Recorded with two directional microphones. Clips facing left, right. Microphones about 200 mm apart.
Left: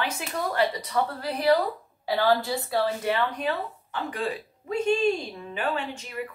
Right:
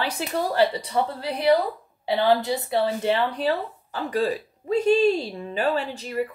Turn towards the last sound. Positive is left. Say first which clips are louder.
# right 5 dB
turn(degrees=-35)  # may be behind; listen again after turning